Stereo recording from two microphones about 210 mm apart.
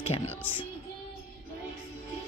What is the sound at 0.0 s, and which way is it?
Music, 30° left (ahead or behind).